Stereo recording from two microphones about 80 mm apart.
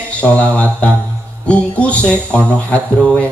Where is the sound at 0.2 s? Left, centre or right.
Centre.